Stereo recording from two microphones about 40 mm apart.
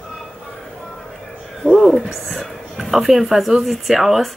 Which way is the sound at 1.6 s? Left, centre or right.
Right.